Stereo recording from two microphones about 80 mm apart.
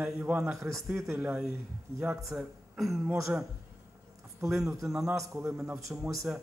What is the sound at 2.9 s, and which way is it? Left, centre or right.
Speech, right.